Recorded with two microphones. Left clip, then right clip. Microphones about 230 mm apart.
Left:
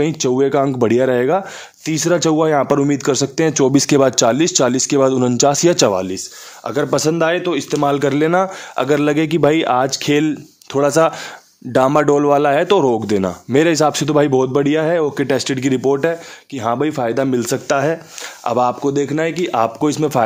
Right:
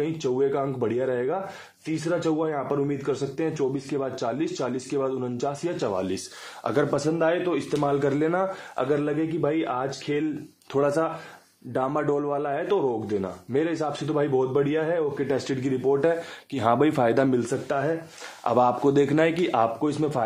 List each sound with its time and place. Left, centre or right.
0.0 s speech: left
5.9 s a man's voice: left
6.9 s speech: left
10.7 s speech: left
15.2 s speech: left
16.5 s speech: centre
17.4 s speech: left
18.4 s a man's voice: left